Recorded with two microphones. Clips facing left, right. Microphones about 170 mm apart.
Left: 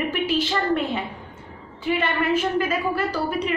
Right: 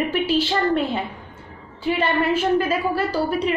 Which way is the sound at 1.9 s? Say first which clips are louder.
Right 2 dB; 30° right (ahead or behind).